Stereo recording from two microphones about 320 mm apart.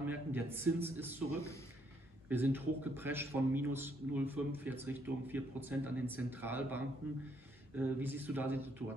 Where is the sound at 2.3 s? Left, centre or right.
Centre.